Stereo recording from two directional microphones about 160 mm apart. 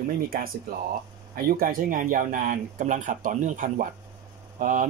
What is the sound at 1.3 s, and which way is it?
Speech, 65° right (ahead or behind).